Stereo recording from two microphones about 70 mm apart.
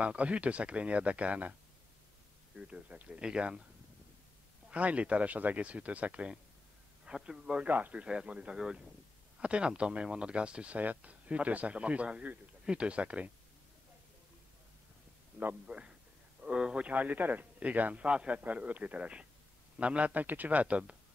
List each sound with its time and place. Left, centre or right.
0.0 s a man's voice: centre
4.6 s a man's voice: centre
7.6 s speech: right
15.6 s a man's voice: centre